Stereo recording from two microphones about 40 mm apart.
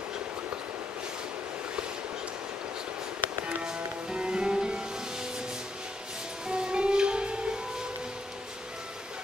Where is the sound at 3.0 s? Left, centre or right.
Right.